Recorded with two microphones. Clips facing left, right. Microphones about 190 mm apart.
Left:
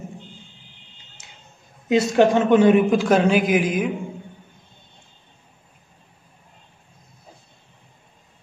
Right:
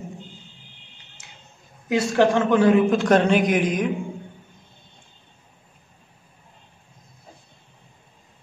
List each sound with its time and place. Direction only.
1.9 s speech: 20° left (ahead or behind)
3.0 s a man's voice: 5° left (ahead or behind)